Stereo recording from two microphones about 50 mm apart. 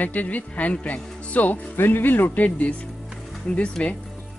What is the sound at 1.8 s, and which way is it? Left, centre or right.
Speech, left.